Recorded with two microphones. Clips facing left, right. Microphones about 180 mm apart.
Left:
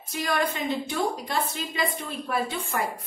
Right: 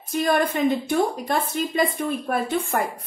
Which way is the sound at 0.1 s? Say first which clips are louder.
Right 6 dB; 50° right (ahead or behind).